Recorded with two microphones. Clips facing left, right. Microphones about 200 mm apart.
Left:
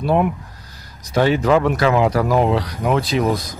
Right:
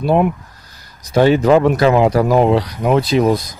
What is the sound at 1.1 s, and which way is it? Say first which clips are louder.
Speech: right 4 dB; 30° right (ahead or behind).